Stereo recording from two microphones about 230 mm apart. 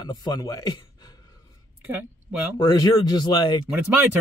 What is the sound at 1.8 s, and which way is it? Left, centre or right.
Speech, centre.